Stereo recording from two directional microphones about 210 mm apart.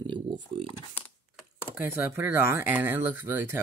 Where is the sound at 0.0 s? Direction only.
25° right (ahead or behind).